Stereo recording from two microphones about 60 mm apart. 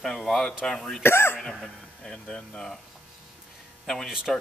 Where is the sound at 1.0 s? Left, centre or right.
Left.